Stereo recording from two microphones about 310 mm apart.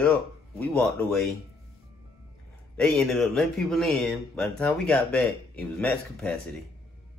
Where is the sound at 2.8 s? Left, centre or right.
Centre.